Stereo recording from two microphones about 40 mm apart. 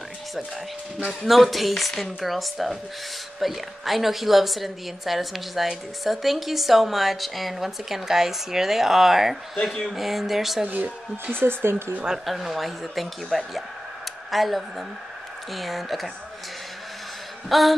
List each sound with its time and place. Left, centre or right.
1.2 s a woman's voice: centre
9.6 s speech: centre
9.9 s a woman's voice: centre
11.3 s speech: right
12.3 s a woman's voice: centre
17.5 s a woman's voice: centre